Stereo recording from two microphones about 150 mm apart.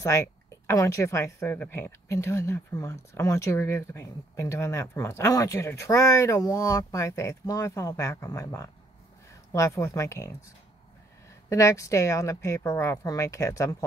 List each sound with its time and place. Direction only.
0.7 s a woman's voice: 20° left (ahead or behind)